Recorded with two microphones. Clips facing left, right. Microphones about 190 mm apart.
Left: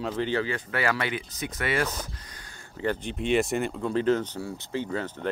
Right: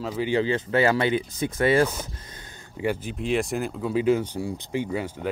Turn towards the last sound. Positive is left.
turn(degrees=-10)  # may be behind; listen again after turning